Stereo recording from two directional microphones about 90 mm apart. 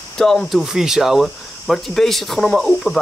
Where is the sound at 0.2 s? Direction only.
Centre (ahead or behind).